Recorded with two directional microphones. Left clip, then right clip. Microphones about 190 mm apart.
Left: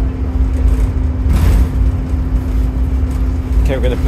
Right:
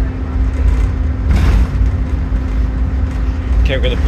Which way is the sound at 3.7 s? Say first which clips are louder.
Even; 20° left (ahead or behind).